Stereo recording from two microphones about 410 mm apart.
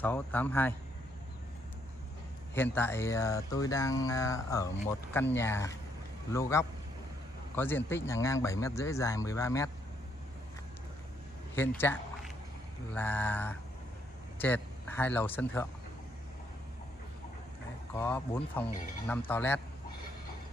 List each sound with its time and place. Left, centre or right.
0.0 s speech: centre
2.5 s speech: centre
11.5 s a man's voice: centre
17.9 s speech: centre